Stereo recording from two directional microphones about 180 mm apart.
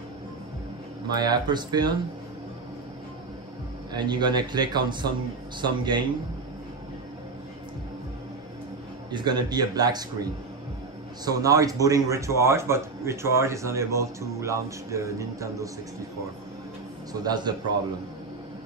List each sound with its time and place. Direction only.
1.0 s speech: 25° right (ahead or behind)
3.9 s speech: 25° right (ahead or behind)
9.1 s speech: 25° right (ahead or behind)
11.2 s speech: 20° right (ahead or behind)
17.1 s speech: 20° right (ahead or behind)